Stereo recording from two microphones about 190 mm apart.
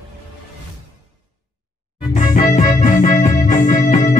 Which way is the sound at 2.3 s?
45° left (ahead or behind).